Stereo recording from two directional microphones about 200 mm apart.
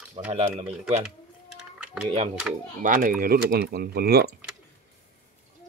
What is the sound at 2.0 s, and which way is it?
Speech, 30° right (ahead or behind).